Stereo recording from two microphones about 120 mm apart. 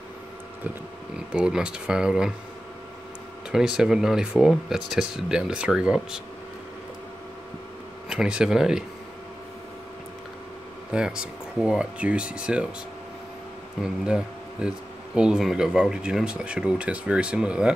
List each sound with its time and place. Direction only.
1.3 s speech: 10° right (ahead or behind)
3.5 s speech: 5° right (ahead or behind)
8.1 s speech: 5° right (ahead or behind)
10.9 s speech: 5° right (ahead or behind)
14.0 s speech: 5° right (ahead or behind)